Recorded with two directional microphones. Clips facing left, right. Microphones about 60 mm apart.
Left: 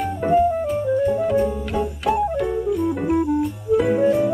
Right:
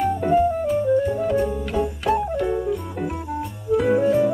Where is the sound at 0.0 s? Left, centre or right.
Centre.